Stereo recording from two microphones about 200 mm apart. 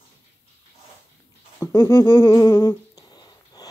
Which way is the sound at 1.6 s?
15° left (ahead or behind).